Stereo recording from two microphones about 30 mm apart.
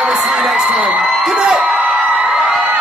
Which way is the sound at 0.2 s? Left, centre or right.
Centre.